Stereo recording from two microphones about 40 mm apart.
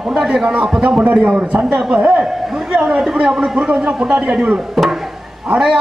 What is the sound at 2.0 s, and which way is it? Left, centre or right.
Speech, right.